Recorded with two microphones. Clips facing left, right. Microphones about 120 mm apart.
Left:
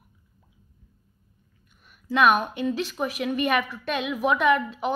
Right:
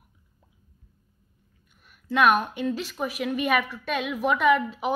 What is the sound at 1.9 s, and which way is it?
A woman's voice, centre (ahead or behind).